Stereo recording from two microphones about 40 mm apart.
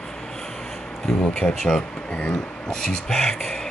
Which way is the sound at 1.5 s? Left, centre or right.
Centre.